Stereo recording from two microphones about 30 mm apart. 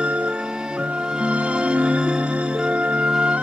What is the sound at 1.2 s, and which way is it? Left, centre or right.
Music, right.